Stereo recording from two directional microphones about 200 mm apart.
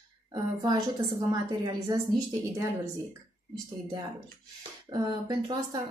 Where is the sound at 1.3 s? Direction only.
20° right (ahead or behind).